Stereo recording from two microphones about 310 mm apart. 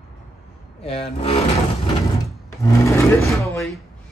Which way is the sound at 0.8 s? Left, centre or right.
Centre.